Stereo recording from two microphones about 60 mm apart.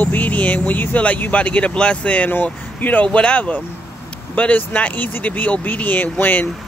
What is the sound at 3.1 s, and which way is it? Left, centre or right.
Speech, centre.